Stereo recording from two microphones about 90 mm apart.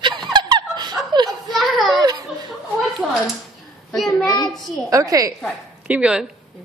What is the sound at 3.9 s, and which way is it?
Child singing, 5° left (ahead or behind).